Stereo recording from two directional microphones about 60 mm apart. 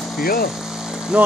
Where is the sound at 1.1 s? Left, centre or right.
Centre.